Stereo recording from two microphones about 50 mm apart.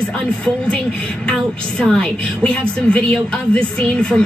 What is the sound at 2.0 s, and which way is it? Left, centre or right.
A woman's voice, left.